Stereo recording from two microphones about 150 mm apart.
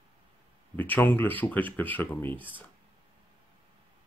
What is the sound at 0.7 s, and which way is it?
Speech, 10° left (ahead or behind).